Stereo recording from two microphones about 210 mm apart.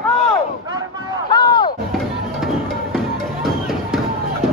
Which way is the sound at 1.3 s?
20° left (ahead or behind).